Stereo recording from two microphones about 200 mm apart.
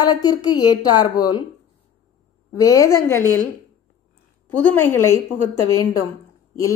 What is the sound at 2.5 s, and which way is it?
Speech, 15° left (ahead or behind).